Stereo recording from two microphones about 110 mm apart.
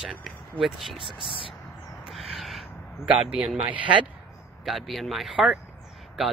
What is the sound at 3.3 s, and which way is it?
Speech, 10° right (ahead or behind).